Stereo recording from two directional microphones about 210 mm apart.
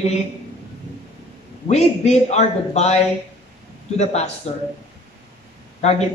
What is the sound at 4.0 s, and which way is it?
Speech, 30° left (ahead or behind).